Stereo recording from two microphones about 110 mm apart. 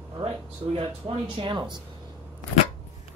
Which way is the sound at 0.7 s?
55° right (ahead or behind).